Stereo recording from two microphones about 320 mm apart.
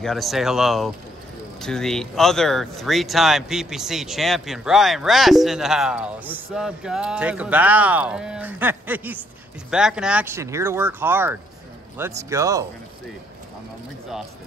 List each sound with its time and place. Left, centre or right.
0.0 s speech: centre